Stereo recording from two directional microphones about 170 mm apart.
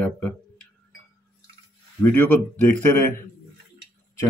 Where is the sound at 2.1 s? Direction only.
10° left (ahead or behind).